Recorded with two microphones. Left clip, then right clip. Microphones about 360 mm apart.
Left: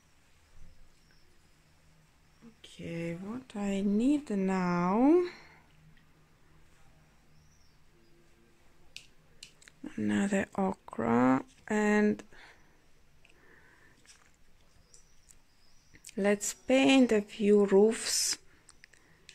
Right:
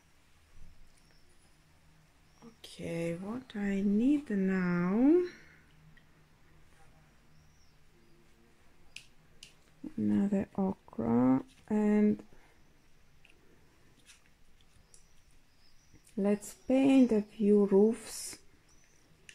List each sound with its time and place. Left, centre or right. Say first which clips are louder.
2.6 s a sound: right 3 dB; centre
3.3 s speech: left 1 dB; centre
9.8 s speech: left 1 dB; left
16.2 s speech: left 4 dB; left